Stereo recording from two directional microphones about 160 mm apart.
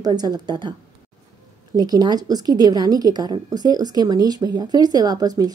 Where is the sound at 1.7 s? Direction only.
25° right (ahead or behind).